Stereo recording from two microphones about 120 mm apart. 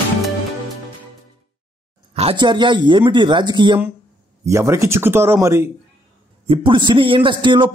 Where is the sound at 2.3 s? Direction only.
40° right (ahead or behind).